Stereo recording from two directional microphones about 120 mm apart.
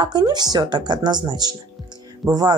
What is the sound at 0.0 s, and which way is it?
Speech, 35° right (ahead or behind).